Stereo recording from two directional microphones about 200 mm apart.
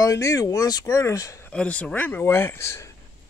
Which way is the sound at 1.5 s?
5° left (ahead or behind).